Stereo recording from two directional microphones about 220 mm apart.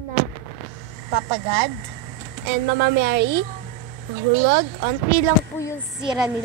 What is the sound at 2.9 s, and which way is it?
Speech, 55° right (ahead or behind).